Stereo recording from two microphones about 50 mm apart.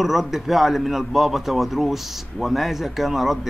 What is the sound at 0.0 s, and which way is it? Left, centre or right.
A man's voice, centre.